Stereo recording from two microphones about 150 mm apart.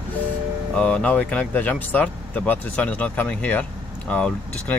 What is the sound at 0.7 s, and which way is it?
Speech, 5° left (ahead or behind).